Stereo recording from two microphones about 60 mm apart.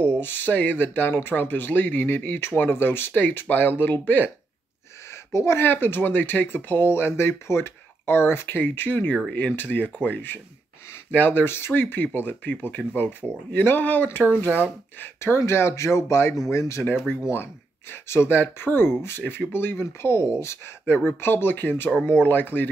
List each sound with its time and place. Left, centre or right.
0.2 s speech: left
5.3 s speech: left
15.1 s speech: left
17.3 s speech: left